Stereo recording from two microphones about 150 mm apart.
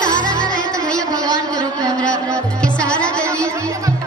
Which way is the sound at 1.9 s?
5° left (ahead or behind).